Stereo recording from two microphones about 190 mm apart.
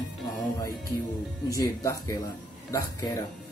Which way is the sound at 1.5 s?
20° left (ahead or behind).